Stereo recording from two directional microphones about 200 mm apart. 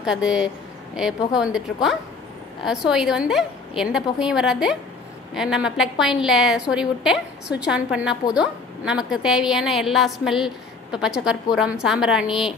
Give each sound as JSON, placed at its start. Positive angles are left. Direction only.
{"t": 0.0, "sound": "a woman's voice", "side_deg": -5}